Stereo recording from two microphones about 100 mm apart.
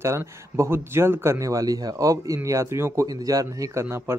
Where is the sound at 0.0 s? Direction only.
30° right (ahead or behind).